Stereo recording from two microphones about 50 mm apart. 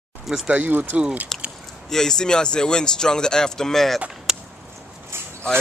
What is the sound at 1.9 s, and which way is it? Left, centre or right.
Speech, centre.